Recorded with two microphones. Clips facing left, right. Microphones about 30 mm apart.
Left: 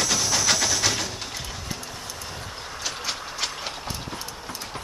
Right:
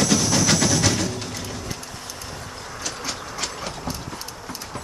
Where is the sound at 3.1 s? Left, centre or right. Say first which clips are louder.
Left 1 dB; centre.